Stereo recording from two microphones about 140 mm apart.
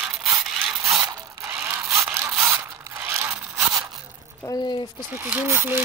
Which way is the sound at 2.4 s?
15° right (ahead or behind).